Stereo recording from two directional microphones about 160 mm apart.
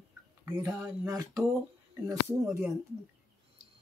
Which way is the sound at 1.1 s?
20° right (ahead or behind).